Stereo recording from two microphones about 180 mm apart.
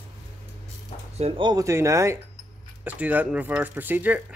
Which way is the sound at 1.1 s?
30° right (ahead or behind).